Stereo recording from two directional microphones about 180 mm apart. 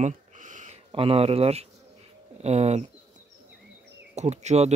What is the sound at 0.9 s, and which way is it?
Speech, 30° right (ahead or behind).